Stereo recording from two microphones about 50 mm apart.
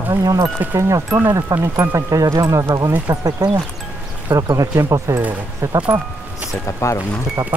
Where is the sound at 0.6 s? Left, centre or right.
Right.